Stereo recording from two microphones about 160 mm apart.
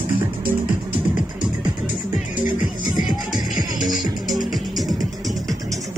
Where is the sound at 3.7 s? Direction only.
Centre (ahead or behind).